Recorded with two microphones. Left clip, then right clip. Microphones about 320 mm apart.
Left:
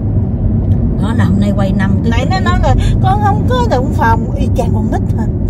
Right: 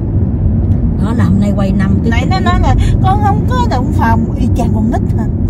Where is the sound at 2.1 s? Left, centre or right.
Left.